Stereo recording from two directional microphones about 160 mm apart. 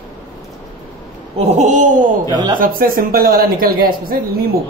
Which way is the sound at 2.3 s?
25° right (ahead or behind).